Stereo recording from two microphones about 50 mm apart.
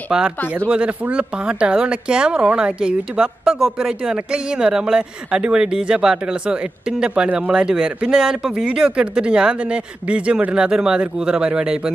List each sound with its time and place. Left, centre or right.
0.1 s a woman's voice: centre
0.7 s a woman's voice: right